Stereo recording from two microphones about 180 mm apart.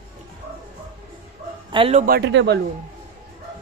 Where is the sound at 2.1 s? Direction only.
70° right (ahead or behind).